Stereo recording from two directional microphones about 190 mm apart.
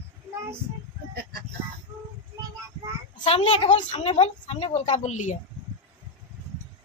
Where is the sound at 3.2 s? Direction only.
35° left (ahead or behind).